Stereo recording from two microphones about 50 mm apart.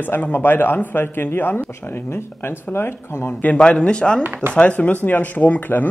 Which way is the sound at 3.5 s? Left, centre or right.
Left.